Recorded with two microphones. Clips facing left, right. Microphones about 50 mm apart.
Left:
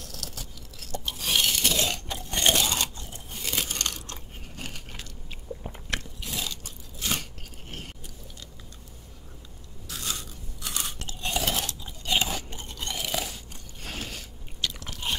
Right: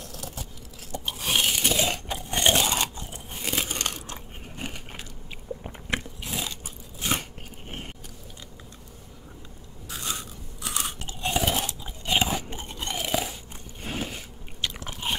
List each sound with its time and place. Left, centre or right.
0.1 s chewing: centre
5.6 s biting: centre
9.8 s crunch: centre